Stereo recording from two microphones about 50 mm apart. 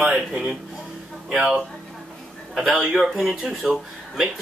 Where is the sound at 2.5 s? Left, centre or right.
Centre.